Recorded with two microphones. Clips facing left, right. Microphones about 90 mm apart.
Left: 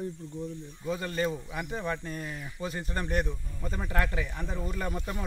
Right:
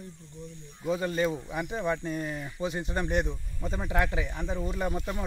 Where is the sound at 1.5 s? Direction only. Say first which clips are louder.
Right 3 dB; 30° right (ahead or behind).